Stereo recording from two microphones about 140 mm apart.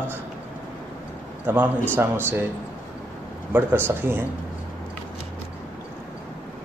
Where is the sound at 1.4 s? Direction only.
15° right (ahead or behind).